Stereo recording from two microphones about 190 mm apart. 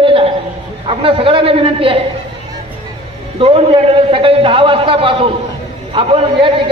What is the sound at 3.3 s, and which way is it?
A man's voice, 30° right (ahead or behind).